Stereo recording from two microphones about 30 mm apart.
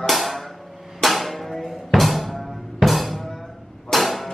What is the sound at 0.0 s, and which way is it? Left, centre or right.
Music, centre.